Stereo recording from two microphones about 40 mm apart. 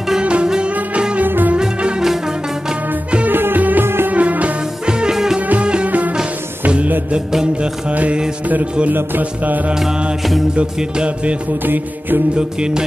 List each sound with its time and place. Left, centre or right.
0.2 s music: right
1.2 s music: right
3.3 s music: right
3.8 s music: right
4.1 s music: right
5.1 s music: centre
5.6 s music: right
5.9 s music: right
7.9 s mantra: right
9.8 s mantra: centre
11.6 s mantra: right
12.4 s music: right